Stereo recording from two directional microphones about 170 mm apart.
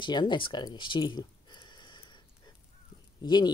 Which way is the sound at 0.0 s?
25° left (ahead or behind).